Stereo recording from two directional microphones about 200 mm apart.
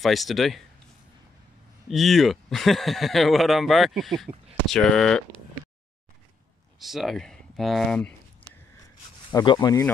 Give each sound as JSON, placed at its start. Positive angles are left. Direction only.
{"t": 0.0, "sound": "speech", "side_deg": 0}
{"t": 1.9, "sound": "speech", "side_deg": 0}
{"t": 6.8, "sound": "speech", "side_deg": 0}
{"t": 8.4, "sound": "a sound", "side_deg": 10}
{"t": 9.3, "sound": "speech", "side_deg": 20}